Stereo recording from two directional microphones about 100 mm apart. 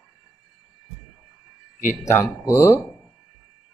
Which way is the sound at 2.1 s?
30° left (ahead or behind).